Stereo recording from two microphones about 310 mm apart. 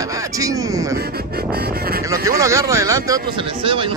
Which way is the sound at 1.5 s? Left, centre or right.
Right.